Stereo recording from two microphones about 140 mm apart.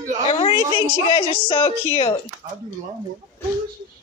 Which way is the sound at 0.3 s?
40° left (ahead or behind).